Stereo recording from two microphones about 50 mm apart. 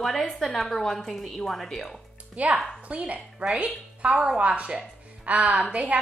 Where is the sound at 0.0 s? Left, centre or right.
Centre.